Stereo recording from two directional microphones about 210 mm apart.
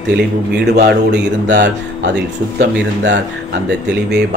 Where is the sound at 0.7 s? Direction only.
50° right (ahead or behind).